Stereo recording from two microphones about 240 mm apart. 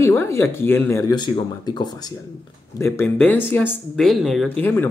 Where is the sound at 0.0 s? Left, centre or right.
Centre.